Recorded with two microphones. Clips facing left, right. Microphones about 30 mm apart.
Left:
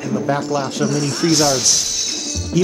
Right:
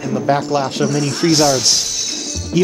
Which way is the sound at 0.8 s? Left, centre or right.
Centre.